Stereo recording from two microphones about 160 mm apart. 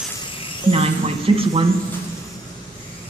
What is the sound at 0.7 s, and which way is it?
Speech, 35° right (ahead or behind).